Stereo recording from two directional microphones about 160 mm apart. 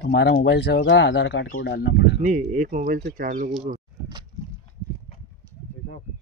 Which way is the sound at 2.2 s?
50° right (ahead or behind).